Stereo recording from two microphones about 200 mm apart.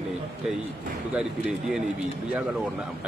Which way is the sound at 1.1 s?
5° right (ahead or behind).